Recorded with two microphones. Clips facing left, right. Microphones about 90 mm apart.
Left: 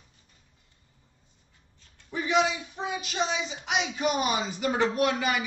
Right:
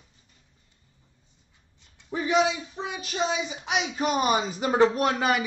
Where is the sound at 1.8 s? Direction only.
20° right (ahead or behind).